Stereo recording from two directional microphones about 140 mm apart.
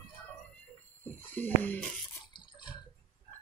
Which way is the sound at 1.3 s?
15° left (ahead or behind).